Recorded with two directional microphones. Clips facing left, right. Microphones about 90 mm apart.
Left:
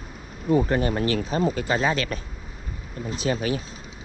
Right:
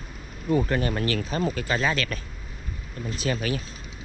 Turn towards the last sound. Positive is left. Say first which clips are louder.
# left 2 dB
turn(degrees=25)  # may be behind; listen again after turning